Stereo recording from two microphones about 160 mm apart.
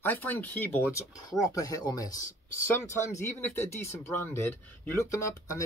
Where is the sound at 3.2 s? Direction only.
15° left (ahead or behind).